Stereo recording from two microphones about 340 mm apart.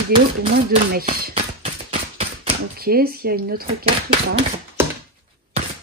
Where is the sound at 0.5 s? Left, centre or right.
Right.